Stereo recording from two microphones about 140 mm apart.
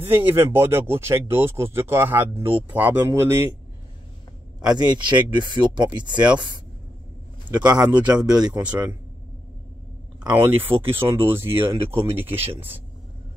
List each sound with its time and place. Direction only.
0.0 s speech: 15° right (ahead or behind)
4.6 s speech: 30° right (ahead or behind)
7.6 s speech: 30° right (ahead or behind)
10.2 s speech: 15° right (ahead or behind)
11.7 s speech: 40° right (ahead or behind)
12.0 s speech: 15° right (ahead or behind)